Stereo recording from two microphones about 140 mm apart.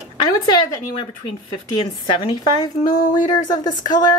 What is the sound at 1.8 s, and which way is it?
A woman's voice, 35° left (ahead or behind).